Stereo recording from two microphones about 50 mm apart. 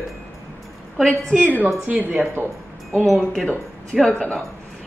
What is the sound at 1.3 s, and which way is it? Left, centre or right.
Speech, right.